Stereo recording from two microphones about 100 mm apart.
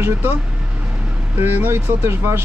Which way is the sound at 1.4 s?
20° right (ahead or behind).